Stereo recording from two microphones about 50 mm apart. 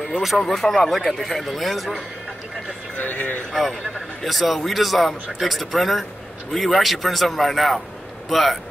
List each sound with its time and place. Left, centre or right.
0.2 s speech: centre
3.0 s speech: left
4.2 s speech: centre